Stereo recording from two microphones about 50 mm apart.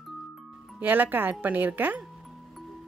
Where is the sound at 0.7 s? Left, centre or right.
Right.